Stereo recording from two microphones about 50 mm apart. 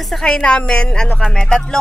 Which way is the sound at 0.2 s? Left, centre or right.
Centre.